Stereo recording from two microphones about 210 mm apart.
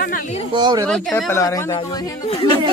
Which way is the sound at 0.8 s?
5° left (ahead or behind).